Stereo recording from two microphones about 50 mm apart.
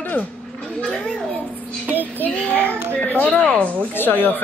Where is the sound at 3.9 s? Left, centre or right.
Left.